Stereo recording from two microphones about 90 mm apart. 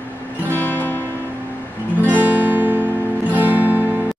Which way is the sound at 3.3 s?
20° right (ahead or behind).